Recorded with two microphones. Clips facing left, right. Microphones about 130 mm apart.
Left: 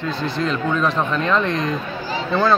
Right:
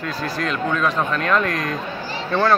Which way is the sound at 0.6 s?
Centre (ahead or behind).